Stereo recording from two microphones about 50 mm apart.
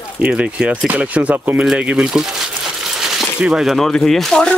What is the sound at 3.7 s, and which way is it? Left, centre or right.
Speech, centre.